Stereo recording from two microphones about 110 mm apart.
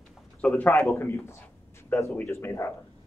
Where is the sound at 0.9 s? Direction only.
20° left (ahead or behind).